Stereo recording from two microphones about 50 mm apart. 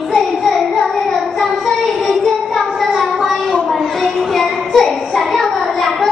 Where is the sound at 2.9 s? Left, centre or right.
Centre.